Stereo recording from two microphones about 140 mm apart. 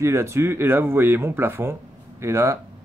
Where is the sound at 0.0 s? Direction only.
20° right (ahead or behind).